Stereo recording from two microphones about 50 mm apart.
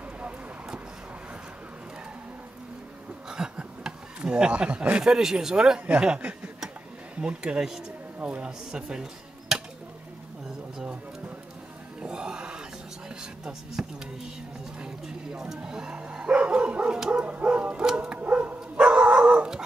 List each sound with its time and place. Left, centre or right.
3.3 s a sound: centre
5.0 s speech: centre
12.0 s music: centre
13.2 s a sound: centre
14.8 s bow-wow: centre
17.1 s dog: right